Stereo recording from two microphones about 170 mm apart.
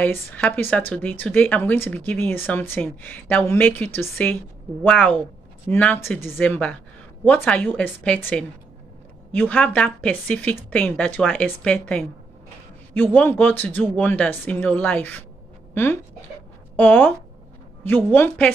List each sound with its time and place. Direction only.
0.0 s speech: 10° left (ahead or behind)